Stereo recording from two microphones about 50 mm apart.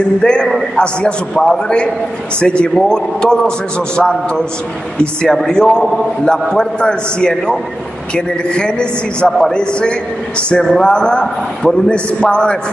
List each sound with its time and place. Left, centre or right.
0.2 s a man's voice: centre
2.4 s a man's voice: left
5.2 s a man's voice: centre